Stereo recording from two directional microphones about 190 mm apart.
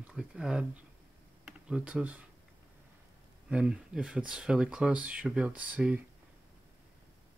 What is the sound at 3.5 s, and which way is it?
Speech, 5° right (ahead or behind).